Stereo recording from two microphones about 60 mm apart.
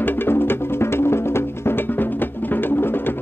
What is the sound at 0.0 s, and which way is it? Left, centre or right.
Music, left.